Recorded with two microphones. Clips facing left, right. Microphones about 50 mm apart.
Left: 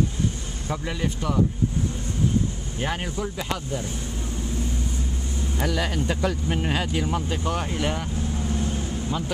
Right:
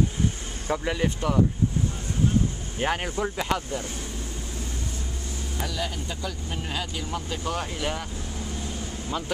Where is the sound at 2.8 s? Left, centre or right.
Right.